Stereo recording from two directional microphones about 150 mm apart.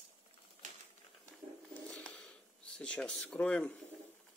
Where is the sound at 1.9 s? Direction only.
5° left (ahead or behind).